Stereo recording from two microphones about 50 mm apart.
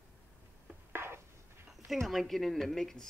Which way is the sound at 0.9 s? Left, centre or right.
Right.